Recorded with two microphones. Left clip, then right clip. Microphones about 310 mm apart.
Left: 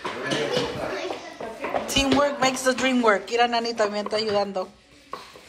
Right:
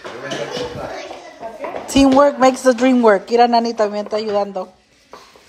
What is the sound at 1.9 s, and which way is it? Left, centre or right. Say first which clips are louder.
Speech: right 10 dB; right.